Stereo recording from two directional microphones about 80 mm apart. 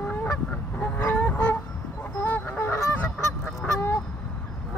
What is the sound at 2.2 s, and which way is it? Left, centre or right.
Fowl, left.